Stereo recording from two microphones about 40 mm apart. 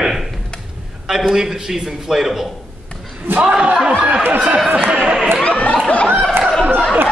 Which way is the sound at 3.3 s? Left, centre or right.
Right.